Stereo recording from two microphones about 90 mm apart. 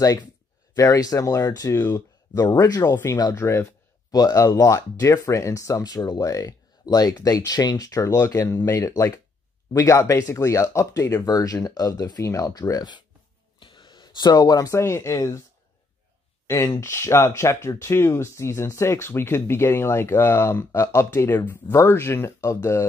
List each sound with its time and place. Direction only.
0.7 s speech: 40° left (ahead or behind)
2.8 s speech: 30° left (ahead or behind)
4.1 s speech: 45° left (ahead or behind)
13.6 s a sound: 65° left (ahead or behind); by 14.8 s 45° left (ahead or behind)
14.8 s speech: 30° left (ahead or behind)
16.4 s speech: 30° left (ahead or behind)